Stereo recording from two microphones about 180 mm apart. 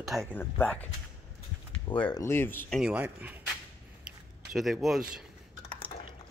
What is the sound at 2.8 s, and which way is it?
Speech, 10° right (ahead or behind).